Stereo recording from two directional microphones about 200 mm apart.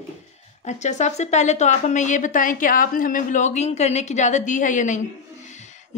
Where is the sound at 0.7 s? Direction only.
35° left (ahead or behind).